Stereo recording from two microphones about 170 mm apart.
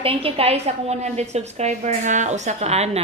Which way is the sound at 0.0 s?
35° right (ahead or behind).